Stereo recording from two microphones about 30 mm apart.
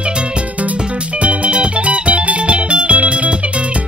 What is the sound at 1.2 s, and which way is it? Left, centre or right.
Music, right.